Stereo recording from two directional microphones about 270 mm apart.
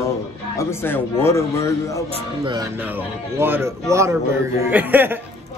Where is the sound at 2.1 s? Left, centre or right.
Centre.